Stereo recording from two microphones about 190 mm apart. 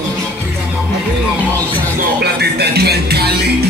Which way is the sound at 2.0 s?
55° right (ahead or behind).